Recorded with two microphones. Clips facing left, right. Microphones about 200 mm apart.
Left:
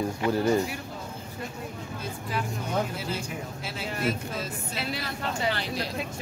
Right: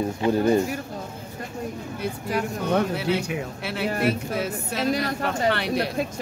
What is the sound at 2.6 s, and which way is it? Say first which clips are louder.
A woman's voice: right 9 dB; 70° right (ahead or behind).